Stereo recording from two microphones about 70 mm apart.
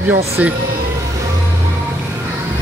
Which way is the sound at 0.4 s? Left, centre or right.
Right.